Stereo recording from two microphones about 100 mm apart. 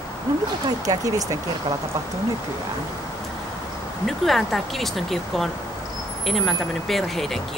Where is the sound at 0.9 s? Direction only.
35° right (ahead or behind).